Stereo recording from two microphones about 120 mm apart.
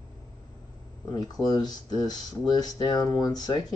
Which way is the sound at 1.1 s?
35° left (ahead or behind).